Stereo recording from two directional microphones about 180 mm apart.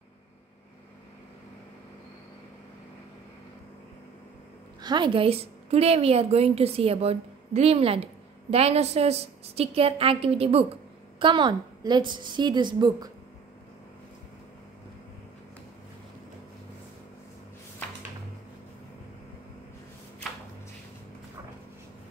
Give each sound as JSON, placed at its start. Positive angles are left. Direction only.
{"t": 4.8, "sound": "a woman's voice", "side_deg": -25}